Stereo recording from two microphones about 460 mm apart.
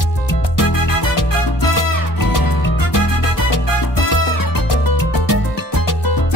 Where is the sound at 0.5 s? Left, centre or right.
Left.